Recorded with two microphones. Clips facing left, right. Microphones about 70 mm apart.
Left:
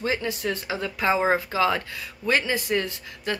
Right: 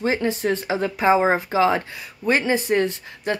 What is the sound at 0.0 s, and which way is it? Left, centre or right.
Speech, right.